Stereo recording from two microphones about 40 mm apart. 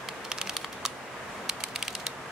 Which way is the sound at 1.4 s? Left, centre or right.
Centre.